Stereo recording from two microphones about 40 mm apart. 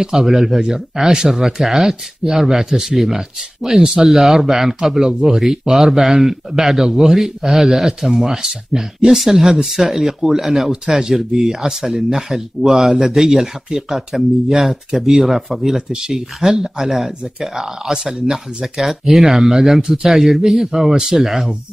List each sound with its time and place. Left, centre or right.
0.0 s speech: centre